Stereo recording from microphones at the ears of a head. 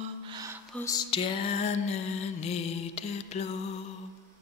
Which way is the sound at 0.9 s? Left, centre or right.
Left.